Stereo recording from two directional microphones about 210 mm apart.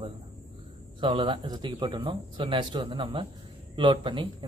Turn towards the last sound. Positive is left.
turn(degrees=-25)  # may be behind; listen again after turning